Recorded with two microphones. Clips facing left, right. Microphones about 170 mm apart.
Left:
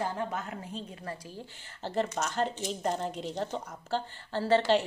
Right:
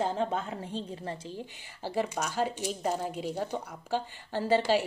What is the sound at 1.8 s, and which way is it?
Speech, 10° right (ahead or behind).